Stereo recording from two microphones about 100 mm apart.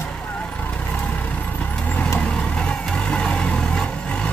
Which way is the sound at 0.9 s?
15° left (ahead or behind).